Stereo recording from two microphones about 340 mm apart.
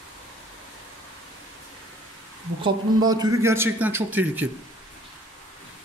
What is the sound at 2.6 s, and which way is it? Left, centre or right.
A man's voice, centre.